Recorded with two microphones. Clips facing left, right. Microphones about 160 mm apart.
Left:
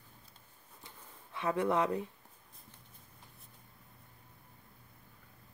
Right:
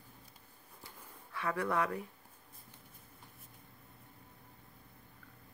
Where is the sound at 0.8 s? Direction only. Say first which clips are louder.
Right 1 dB; 20° left (ahead or behind).